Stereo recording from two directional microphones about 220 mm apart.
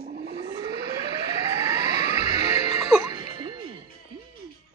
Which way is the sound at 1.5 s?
15° right (ahead or behind).